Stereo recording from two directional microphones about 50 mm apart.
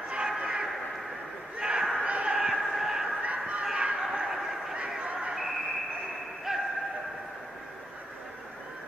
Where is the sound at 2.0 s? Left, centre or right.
Right.